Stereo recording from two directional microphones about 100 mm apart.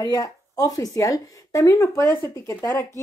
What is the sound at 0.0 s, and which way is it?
Speech, 35° left (ahead or behind).